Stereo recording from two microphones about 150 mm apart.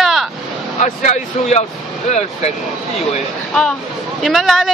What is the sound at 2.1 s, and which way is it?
Speech, 50° left (ahead or behind).